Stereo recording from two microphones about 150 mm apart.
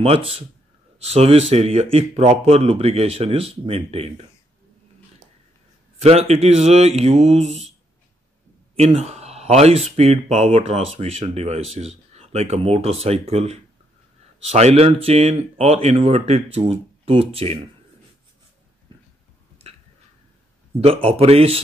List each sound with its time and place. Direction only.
0.0 s speech: 40° right (ahead or behind)
5.9 s speech: 45° right (ahead or behind)
8.7 s speech: 45° right (ahead or behind)
20.8 s speech: 40° right (ahead or behind)